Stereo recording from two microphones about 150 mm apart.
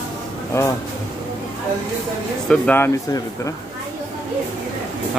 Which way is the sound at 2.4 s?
5° left (ahead or behind).